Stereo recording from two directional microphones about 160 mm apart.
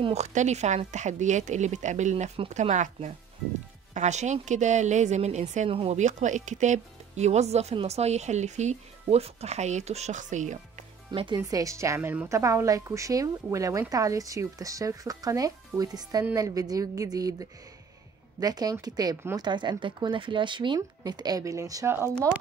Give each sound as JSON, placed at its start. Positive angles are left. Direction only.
{"t": 0.0, "sound": "speech", "side_deg": -45}
{"t": 5.7, "sound": "speech", "side_deg": -35}
{"t": 5.9, "sound": "speech", "side_deg": -50}
{"t": 11.1, "sound": "speech", "side_deg": -30}
{"t": 11.3, "sound": "a woman's voice", "side_deg": -20}